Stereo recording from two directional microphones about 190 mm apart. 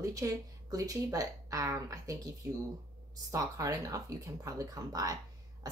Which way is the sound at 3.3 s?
15° right (ahead or behind).